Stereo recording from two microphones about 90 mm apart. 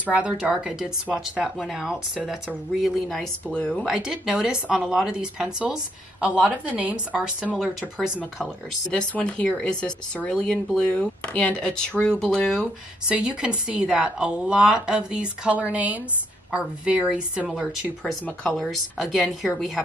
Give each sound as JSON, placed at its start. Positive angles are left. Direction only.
{"t": 0.0, "sound": "a woman's voice", "side_deg": -15}
{"t": 3.8, "sound": "speech", "side_deg": -5}
{"t": 8.9, "sound": "speech", "side_deg": 10}
{"t": 13.1, "sound": "speech", "side_deg": -10}
{"t": 18.5, "sound": "a woman's voice", "side_deg": 0}